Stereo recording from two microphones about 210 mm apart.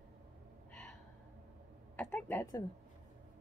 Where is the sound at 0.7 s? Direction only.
5° left (ahead or behind).